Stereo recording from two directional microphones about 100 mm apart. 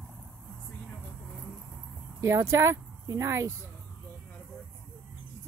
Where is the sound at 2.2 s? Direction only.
30° right (ahead or behind).